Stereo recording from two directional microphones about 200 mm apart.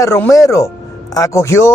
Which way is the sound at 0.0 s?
15° left (ahead or behind).